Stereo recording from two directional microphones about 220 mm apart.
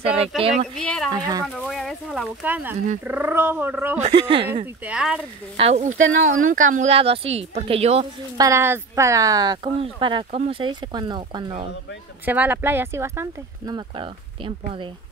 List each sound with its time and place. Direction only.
0.0 s speech: 25° right (ahead or behind)
0.7 s speech: 5° left (ahead or behind)
1.1 s speech: 20° right (ahead or behind)
1.6 s a sound: centre (ahead or behind)
3.0 s speech: 10° right (ahead or behind)
4.0 s speech: 25° right (ahead or behind)
4.8 s speech: 5° right (ahead or behind)
5.6 s speech: 30° right (ahead or behind)
8.4 s speech: 10° right (ahead or behind)
12.3 s speech: 10° right (ahead or behind); by 14.9 s 25° right (ahead or behind)